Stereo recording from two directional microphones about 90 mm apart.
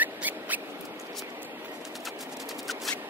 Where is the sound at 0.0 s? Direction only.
20° right (ahead or behind).